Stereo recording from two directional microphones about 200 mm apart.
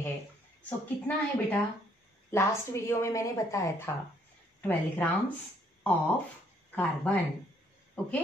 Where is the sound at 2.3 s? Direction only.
15° left (ahead or behind).